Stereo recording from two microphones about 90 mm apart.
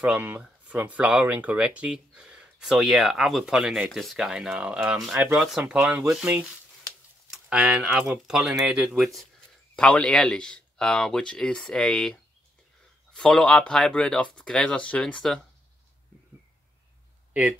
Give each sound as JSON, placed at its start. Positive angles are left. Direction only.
{"t": 0.0, "sound": "speech", "side_deg": -15}
{"t": 7.4, "sound": "speech", "side_deg": -10}
{"t": 9.8, "sound": "speech", "side_deg": 10}
{"t": 17.3, "sound": "a sound", "side_deg": -15}